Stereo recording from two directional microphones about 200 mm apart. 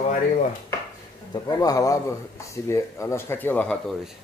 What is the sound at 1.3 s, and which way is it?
Speech, 20° left (ahead or behind).